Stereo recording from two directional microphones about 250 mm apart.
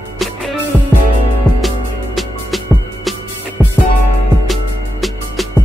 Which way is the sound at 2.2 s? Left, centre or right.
Centre.